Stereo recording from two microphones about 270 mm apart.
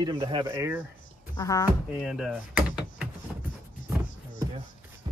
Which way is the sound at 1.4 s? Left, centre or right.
Centre.